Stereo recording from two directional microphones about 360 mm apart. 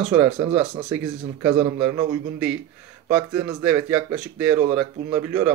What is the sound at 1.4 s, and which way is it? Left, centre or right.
Speech, centre.